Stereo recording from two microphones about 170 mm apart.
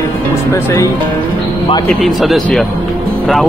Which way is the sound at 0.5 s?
15° left (ahead or behind).